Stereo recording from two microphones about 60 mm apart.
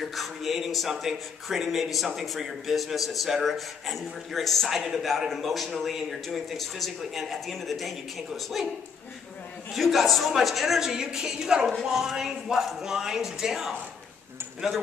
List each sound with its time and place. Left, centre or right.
0.0 s speech: centre